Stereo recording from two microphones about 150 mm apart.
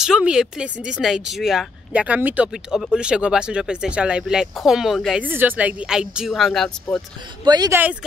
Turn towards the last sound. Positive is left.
turn(degrees=-25)  # may be behind; listen again after turning